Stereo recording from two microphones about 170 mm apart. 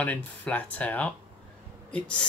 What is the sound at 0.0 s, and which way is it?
Speech, 10° left (ahead or behind).